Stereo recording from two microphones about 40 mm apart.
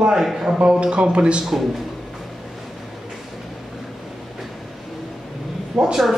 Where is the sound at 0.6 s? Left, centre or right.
Right.